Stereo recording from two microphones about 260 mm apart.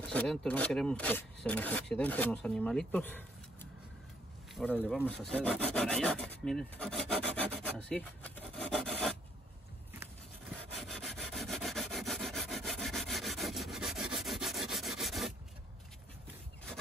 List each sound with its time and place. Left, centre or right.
0.0 s speech: centre
4.7 s speech: centre
7.9 s rub: centre
10.7 s rub: centre